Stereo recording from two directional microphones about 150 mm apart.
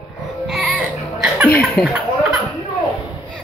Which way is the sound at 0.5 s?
5° right (ahead or behind).